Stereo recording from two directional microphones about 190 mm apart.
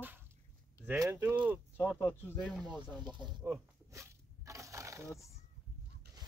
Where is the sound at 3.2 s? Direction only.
15° right (ahead or behind).